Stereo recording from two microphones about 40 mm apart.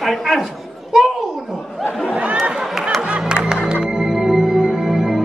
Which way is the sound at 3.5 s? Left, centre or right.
Right.